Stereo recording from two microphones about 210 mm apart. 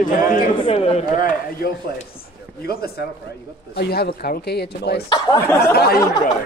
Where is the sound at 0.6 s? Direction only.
25° left (ahead or behind).